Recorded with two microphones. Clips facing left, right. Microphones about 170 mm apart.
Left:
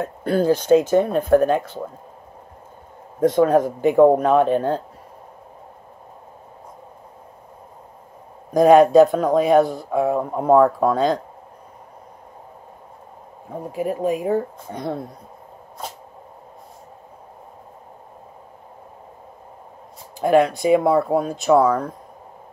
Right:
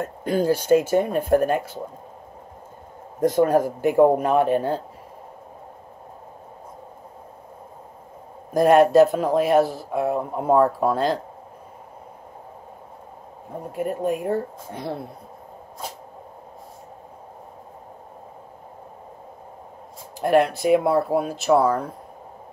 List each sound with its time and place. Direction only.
0.2 s a man's voice: 10° right (ahead or behind)
3.2 s a man's voice: 10° right (ahead or behind)
8.5 s speech: centre (ahead or behind)
13.6 s speech: centre (ahead or behind)
20.2 s speech: centre (ahead or behind)